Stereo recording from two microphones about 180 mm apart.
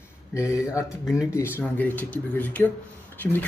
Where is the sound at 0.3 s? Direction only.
15° left (ahead or behind).